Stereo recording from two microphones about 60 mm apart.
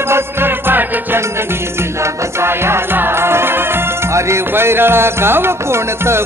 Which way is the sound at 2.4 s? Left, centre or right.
Right.